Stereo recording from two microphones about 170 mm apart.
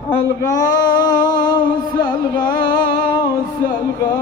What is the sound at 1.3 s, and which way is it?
Music, 25° left (ahead or behind).